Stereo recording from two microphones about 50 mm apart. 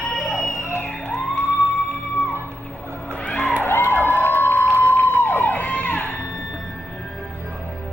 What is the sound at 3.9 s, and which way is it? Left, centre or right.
Cheering, left.